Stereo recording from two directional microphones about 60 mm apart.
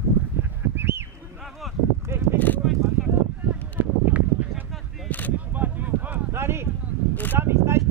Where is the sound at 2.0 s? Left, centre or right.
Right.